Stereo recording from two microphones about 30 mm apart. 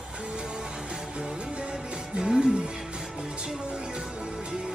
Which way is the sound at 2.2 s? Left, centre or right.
Right.